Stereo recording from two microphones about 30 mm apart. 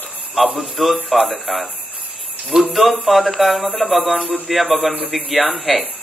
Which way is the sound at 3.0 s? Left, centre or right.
Centre.